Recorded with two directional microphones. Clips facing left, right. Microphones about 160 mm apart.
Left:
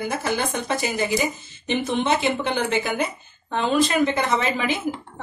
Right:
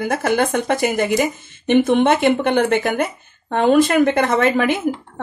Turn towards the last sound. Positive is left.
turn(degrees=-55)  # may be behind; listen again after turning